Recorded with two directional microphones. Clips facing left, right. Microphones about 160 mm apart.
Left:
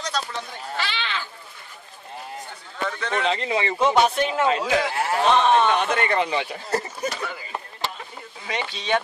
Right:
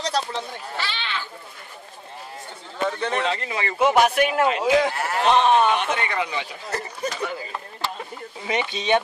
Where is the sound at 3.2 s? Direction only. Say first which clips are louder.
Left 2 dB; 20° left (ahead or behind).